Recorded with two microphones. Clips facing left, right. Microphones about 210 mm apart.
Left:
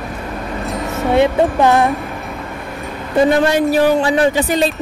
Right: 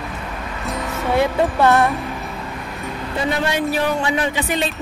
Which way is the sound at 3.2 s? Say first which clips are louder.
Left 7 dB; 45° left (ahead or behind).